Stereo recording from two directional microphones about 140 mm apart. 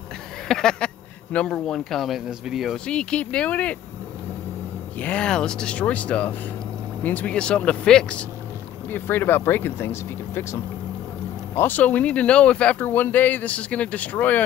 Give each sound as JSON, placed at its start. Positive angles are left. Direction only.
{"t": 0.5, "sound": "speech", "side_deg": 5}
{"t": 4.9, "sound": "speech", "side_deg": 10}